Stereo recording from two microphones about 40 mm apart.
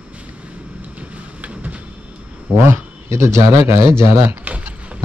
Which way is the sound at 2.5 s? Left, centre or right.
Right.